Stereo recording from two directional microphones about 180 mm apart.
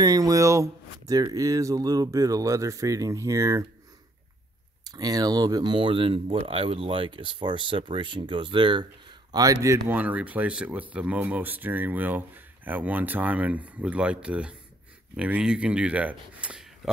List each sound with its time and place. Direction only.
0.0 s speech: 20° right (ahead or behind)
4.8 s speech: 20° right (ahead or behind); by 16.9 s 5° right (ahead or behind)